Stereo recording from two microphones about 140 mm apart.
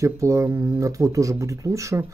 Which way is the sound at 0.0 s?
20° right (ahead or behind).